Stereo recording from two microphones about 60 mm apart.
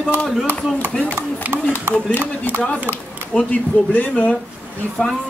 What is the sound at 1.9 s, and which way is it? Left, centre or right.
Speech, right.